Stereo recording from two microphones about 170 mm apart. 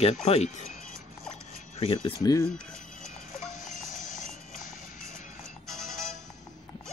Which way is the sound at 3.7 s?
50° left (ahead or behind).